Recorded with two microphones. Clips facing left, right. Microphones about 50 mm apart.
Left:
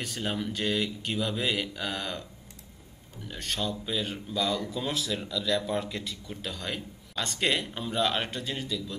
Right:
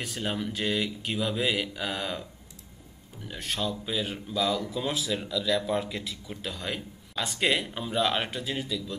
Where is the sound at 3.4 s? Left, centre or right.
Centre.